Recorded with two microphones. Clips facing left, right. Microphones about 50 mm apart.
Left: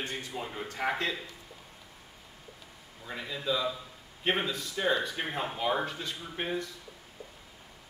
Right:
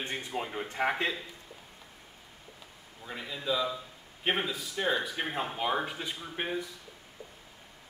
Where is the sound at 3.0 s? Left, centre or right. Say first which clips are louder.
Left 1 dB; centre.